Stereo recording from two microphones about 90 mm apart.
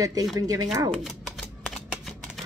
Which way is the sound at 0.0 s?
45° right (ahead or behind).